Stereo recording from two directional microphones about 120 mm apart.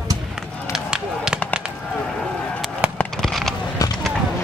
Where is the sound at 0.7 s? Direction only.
5° right (ahead or behind).